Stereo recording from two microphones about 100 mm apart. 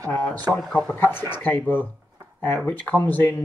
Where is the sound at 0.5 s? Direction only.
5° left (ahead or behind).